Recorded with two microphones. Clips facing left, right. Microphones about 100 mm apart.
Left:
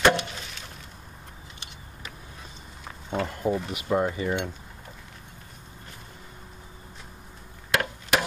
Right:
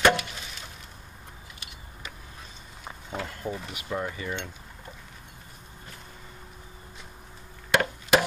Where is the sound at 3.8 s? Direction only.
25° left (ahead or behind).